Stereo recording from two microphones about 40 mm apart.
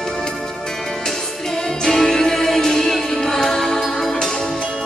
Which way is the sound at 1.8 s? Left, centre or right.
Centre.